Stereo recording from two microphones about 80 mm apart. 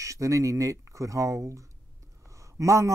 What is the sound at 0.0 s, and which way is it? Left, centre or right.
Speech, right.